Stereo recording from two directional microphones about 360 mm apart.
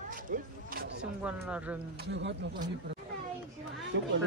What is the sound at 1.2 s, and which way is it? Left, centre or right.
Speech, centre.